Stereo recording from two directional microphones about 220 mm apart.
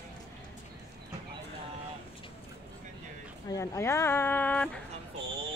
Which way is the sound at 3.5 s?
15° left (ahead or behind).